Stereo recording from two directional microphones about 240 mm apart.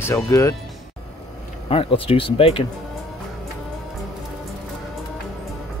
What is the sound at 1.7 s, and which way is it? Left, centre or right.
Speech, left.